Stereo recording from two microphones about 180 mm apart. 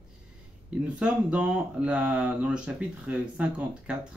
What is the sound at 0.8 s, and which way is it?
Speech, 5° right (ahead or behind).